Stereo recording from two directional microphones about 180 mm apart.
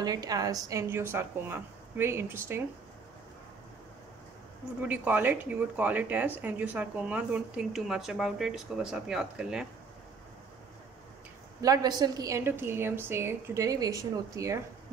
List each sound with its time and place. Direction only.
0.0 s speech: 20° right (ahead or behind)
4.7 s speech: 10° right (ahead or behind)
11.6 s speech: 20° right (ahead or behind)